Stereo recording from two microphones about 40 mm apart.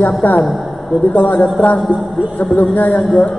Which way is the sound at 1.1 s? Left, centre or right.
Left.